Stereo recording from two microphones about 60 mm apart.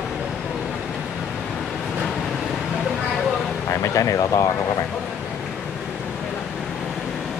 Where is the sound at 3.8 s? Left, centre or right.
Left.